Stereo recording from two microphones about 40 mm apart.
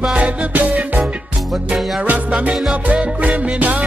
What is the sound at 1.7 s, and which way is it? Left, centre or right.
Music, centre.